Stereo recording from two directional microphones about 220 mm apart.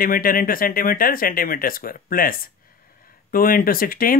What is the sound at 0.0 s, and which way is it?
Speech, 40° left (ahead or behind).